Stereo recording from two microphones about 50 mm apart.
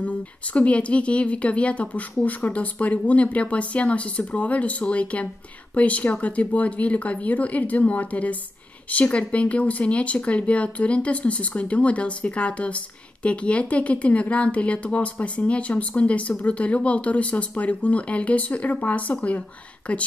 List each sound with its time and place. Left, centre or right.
0.0 s speech: left